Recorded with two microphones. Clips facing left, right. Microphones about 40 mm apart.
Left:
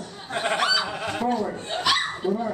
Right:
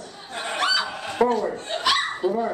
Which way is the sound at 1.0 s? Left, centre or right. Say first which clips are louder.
Right 3 dB; centre.